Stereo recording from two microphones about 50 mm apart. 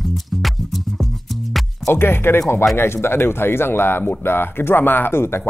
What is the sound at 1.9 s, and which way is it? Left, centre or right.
Speech, left.